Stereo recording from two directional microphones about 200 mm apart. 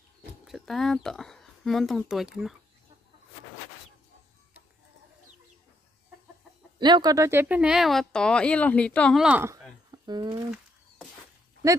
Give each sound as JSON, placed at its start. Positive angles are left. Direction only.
{"t": 0.5, "sound": "speech", "side_deg": 0}
{"t": 6.8, "sound": "speech", "side_deg": -20}
{"t": 9.8, "sound": "a sound", "side_deg": -20}